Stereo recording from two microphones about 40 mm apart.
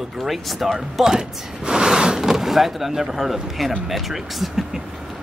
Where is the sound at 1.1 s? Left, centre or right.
Centre.